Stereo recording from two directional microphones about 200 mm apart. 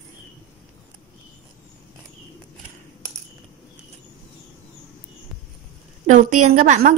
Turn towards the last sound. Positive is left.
turn(degrees=-40)  # may be behind; listen again after turning